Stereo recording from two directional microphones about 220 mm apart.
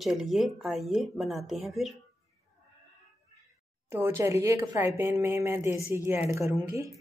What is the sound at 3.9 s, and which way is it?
A woman's voice, 15° right (ahead or behind).